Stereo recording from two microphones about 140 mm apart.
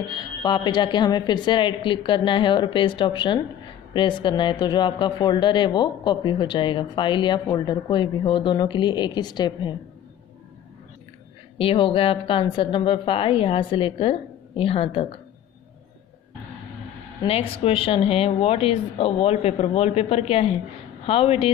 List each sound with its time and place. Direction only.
0.1 s speech: 30° left (ahead or behind)
11.5 s speech: 40° left (ahead or behind)
17.2 s speech: 45° left (ahead or behind)